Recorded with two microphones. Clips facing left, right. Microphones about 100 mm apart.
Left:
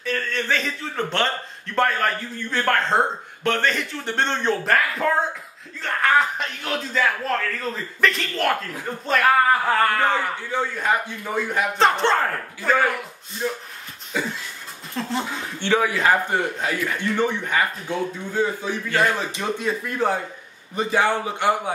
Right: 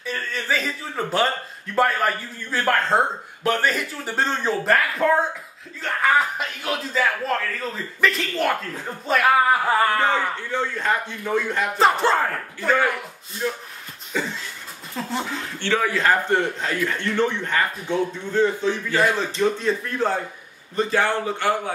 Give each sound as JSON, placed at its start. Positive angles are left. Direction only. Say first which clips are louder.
{"t": 0.0, "sound": "a man's voice", "louder": "left 3 dB", "side_deg": -5}
{"t": 10.1, "sound": "a man's voice", "louder": "even", "side_deg": 10}
{"t": 11.8, "sound": "speech", "louder": "right 1 dB", "side_deg": -5}
{"t": 14.1, "sound": "a man's voice", "louder": "even", "side_deg": 10}
{"t": 15.0, "sound": "speech", "louder": "left 1 dB", "side_deg": 0}
{"t": 15.6, "sound": "a man's voice", "louder": "left 1 dB", "side_deg": 15}